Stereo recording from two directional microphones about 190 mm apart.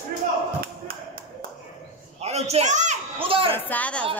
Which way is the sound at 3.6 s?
10° left (ahead or behind).